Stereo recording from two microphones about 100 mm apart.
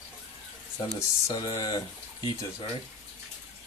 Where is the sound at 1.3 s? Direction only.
35° left (ahead or behind).